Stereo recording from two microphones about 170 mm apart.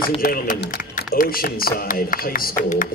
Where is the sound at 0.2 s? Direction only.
60° left (ahead or behind).